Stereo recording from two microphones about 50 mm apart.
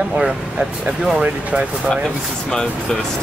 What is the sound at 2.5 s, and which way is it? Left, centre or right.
Speech, centre.